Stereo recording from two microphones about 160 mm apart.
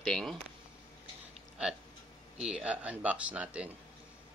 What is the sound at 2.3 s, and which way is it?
Speech, 5° right (ahead or behind).